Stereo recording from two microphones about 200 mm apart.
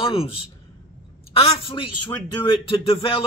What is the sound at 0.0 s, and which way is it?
A man's voice, 30° left (ahead or behind).